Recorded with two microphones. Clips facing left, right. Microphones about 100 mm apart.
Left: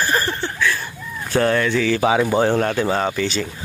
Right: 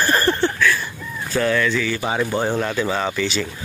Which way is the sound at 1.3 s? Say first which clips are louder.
Left 2 dB; 45° left (ahead or behind).